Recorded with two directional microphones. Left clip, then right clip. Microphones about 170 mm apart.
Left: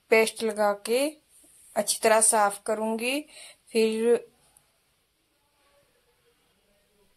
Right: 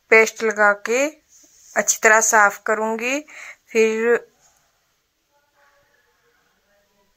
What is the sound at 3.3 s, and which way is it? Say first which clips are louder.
Speech: right 7 dB; 40° right (ahead or behind).